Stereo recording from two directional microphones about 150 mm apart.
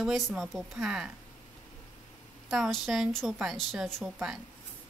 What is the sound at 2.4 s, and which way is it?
A woman's voice, centre (ahead or behind).